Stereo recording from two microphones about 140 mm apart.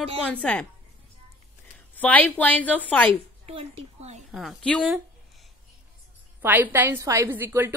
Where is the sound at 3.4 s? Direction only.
45° right (ahead or behind).